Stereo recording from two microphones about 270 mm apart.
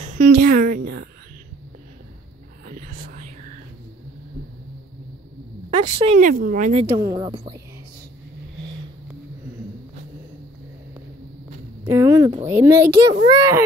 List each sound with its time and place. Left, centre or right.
0.3 s a woman's voice: right
2.8 s whispering: right
5.7 s speech: right
11.8 s a sound: centre
12.4 s a child's voice: centre